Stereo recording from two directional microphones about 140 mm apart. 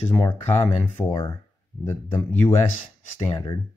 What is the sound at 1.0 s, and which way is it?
Speech, 25° left (ahead or behind).